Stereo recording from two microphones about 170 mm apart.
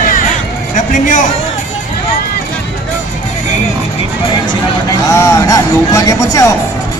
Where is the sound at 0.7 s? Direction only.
50° left (ahead or behind).